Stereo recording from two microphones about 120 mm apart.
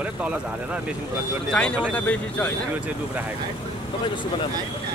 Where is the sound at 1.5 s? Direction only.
10° left (ahead or behind).